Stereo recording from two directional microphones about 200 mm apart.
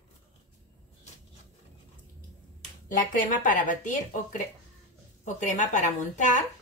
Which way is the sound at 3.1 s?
40° left (ahead or behind).